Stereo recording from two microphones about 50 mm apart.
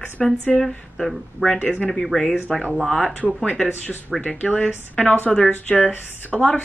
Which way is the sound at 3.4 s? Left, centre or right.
Centre.